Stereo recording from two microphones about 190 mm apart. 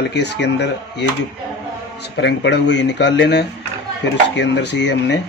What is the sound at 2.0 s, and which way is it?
Speech, 65° left (ahead or behind).